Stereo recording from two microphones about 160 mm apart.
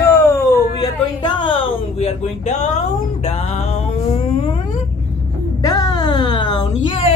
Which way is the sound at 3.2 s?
45° left (ahead or behind).